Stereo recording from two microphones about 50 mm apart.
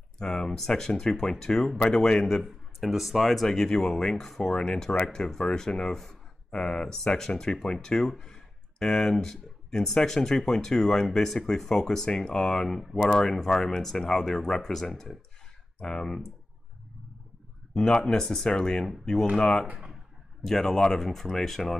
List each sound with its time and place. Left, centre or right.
0.2 s speech: centre
4.6 s speech: centre
17.7 s speech: centre